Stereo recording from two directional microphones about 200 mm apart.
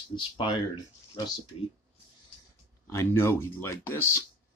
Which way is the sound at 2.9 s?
15° left (ahead or behind).